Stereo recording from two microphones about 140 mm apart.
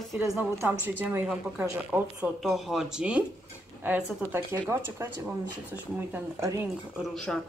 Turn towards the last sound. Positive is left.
turn(degrees=5)  # may be behind; listen again after turning